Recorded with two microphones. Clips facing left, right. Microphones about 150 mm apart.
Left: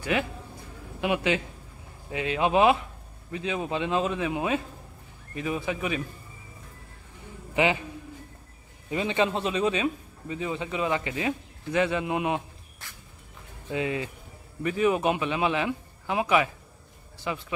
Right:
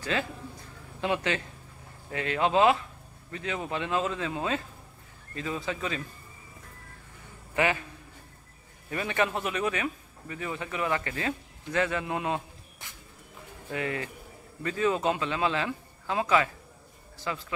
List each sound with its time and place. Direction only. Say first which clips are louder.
0.0 s a man's voice: left 3 dB; 15° left (ahead or behind)
7.5 s a man's voice: left 3 dB; 20° left (ahead or behind)
8.9 s speech: left 3 dB; 20° left (ahead or behind)
12.8 s a sound: left 1 dB; 20° right (ahead or behind)
13.7 s a man's voice: left 3 dB; 15° left (ahead or behind)